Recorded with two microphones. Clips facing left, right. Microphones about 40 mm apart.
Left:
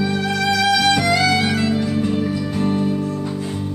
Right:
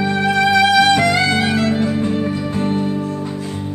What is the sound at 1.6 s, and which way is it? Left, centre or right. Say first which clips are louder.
Music: right 2 dB; right.